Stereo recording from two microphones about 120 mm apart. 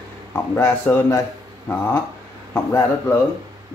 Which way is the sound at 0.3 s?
20° left (ahead or behind).